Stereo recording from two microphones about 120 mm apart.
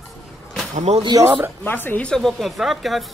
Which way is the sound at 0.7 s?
65° right (ahead or behind).